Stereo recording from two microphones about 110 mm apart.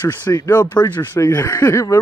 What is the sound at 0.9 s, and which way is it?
Speech, 20° left (ahead or behind).